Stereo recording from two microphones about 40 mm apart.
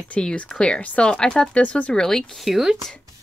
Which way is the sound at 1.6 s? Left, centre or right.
Left.